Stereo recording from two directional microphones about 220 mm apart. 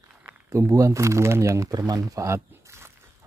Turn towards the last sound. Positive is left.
turn(degrees=-10)  # may be behind; listen again after turning